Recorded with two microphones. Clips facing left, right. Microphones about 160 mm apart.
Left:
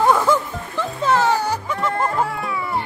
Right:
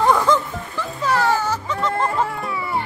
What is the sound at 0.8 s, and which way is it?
Music, 20° left (ahead or behind).